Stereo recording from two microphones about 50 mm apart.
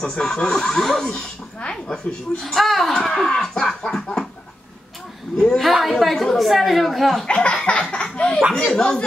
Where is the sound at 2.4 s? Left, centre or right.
Centre.